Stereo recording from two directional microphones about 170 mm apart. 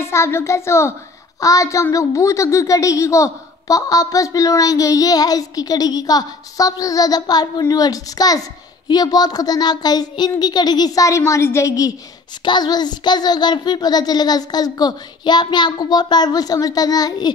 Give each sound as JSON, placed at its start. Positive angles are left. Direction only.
{"t": 0.0, "sound": "a child's voice", "side_deg": 15}